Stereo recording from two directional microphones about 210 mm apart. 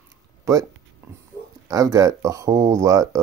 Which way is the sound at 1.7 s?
15° right (ahead or behind).